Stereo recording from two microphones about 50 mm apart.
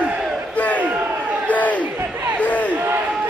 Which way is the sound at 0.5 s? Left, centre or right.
Left.